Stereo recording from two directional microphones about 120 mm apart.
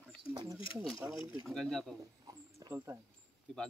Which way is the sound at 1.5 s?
5° left (ahead or behind).